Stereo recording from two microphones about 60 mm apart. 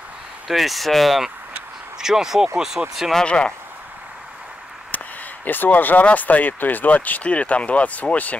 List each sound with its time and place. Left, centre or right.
0.5 s speech: centre
3.2 s speech: centre
4.9 s speech: left